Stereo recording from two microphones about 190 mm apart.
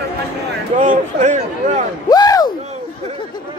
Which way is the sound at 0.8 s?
40° right (ahead or behind).